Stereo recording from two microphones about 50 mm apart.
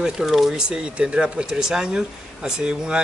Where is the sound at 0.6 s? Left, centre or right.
Centre.